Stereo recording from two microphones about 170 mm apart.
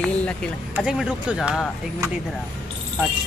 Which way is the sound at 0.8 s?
5° right (ahead or behind).